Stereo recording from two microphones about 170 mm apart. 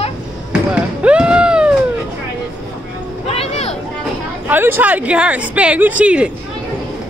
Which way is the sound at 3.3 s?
35° left (ahead or behind).